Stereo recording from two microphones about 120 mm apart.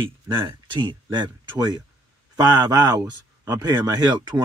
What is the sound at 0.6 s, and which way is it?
Speech, 40° right (ahead or behind).